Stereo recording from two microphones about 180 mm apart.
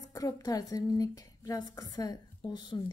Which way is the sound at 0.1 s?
20° left (ahead or behind).